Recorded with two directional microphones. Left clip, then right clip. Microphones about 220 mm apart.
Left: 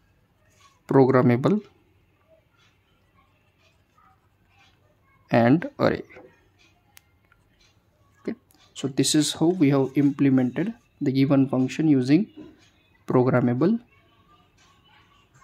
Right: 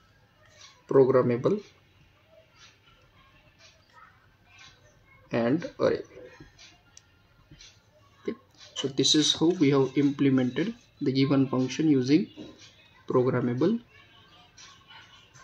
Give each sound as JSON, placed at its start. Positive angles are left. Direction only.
{"t": 0.8, "sound": "speech", "side_deg": 50}
{"t": 5.3, "sound": "speech", "side_deg": 50}
{"t": 8.2, "sound": "speech", "side_deg": 35}